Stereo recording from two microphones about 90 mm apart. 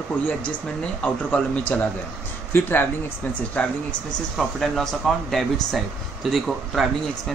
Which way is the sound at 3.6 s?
10° left (ahead or behind).